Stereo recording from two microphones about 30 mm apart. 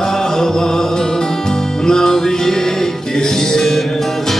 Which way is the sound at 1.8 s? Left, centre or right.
Centre.